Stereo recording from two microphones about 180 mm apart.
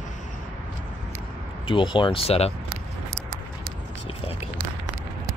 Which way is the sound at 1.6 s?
25° left (ahead or behind).